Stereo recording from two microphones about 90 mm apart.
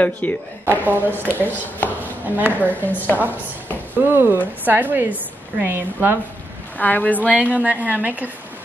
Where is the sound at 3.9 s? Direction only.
20° right (ahead or behind).